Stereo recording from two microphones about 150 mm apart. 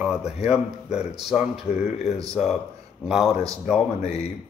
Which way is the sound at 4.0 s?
45° left (ahead or behind).